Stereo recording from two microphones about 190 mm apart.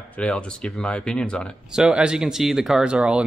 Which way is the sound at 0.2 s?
5° left (ahead or behind).